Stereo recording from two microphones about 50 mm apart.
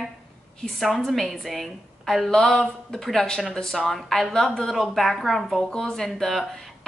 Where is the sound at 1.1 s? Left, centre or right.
Centre.